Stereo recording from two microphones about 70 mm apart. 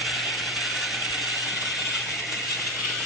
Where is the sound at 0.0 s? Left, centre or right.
Centre.